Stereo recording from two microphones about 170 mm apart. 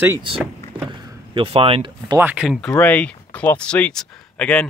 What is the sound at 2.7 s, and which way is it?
Speech, 10° left (ahead or behind).